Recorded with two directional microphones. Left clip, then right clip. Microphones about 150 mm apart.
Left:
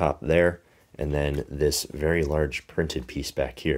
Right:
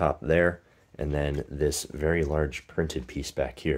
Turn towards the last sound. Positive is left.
turn(degrees=15)  # may be behind; listen again after turning